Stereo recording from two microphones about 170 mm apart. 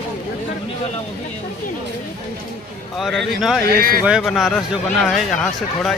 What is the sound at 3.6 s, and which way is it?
Speech, 60° right (ahead or behind).